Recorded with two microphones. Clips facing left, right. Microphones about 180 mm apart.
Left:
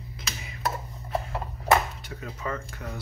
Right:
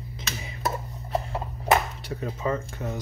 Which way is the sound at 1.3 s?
30° right (ahead or behind).